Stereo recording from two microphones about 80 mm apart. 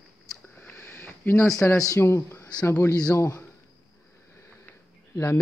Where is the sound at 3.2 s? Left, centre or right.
Left.